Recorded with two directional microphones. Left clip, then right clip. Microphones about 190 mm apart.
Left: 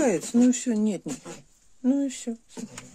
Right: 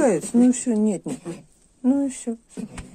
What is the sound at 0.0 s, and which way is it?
Speech, 20° left (ahead or behind).